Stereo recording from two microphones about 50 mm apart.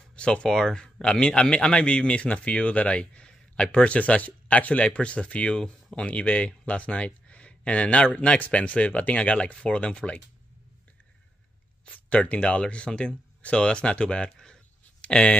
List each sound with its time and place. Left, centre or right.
0.1 s speech: centre
6.0 s speech: left
11.9 s speech: left
15.0 s a sound: left